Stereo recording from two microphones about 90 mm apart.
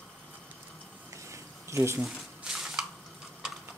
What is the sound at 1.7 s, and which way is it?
Speech, 35° right (ahead or behind).